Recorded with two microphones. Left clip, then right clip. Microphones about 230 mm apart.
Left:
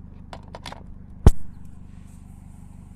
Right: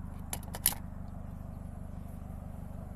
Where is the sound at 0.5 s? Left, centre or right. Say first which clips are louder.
Even; left.